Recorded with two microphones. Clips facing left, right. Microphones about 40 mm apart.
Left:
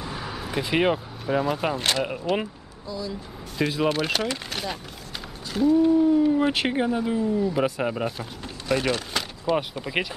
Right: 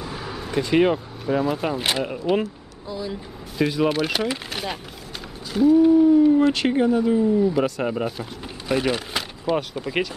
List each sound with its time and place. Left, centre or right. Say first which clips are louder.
0.0 s vehicle: right 1 dB; centre
1.8 s speech: right 1 dB; centre
2.9 s speech: right 2 dB; right
3.5 s speech: right 3 dB; centre
6.0 s howl: right 5 dB; centre
6.5 s speech: right 4 dB; centre
7.2 s speech: right 5 dB; centre
7.5 s speech: right 2 dB; centre
8.6 s a sound: right 2 dB; centre
9.8 s speech: right 3 dB; centre